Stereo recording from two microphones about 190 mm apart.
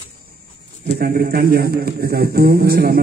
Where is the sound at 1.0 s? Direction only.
55° right (ahead or behind).